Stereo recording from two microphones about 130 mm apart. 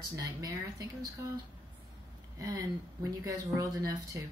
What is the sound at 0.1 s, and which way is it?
Speech, 30° right (ahead or behind).